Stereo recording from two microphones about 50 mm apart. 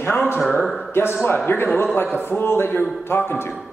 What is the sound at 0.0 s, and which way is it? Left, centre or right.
A man's voice, left.